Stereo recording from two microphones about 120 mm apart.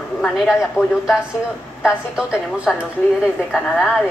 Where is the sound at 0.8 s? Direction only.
20° left (ahead or behind).